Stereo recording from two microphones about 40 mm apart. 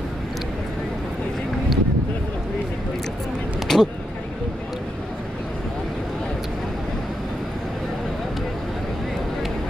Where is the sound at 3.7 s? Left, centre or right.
Centre.